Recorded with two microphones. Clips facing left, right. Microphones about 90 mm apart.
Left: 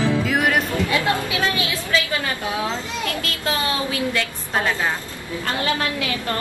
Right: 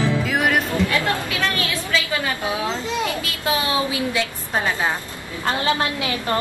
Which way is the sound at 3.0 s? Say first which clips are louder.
Right 1 dB; 15° right (ahead or behind).